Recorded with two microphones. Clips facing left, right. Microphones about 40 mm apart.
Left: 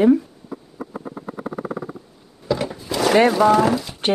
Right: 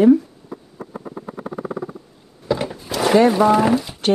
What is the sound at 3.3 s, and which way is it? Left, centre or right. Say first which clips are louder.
Speech: even; centre.